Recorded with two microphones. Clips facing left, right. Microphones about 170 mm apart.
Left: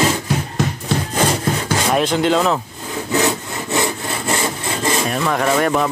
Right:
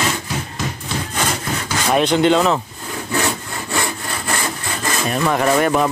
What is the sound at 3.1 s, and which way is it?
Sawing, 20° left (ahead or behind).